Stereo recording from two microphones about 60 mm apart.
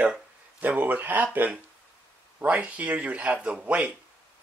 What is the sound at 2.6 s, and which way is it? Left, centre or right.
Speech, right.